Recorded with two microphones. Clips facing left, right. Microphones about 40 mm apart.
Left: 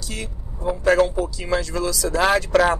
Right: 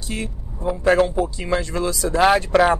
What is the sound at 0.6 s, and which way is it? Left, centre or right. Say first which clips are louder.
Speech: even; right.